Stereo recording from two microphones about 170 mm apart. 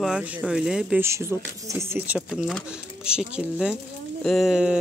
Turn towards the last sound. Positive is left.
turn(degrees=-5)  # may be behind; listen again after turning